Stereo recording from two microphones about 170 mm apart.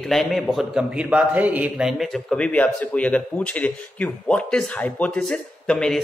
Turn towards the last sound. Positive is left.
turn(degrees=5)  # may be behind; listen again after turning